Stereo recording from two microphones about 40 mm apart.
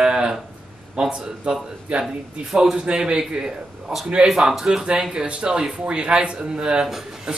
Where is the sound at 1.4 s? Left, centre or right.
Right.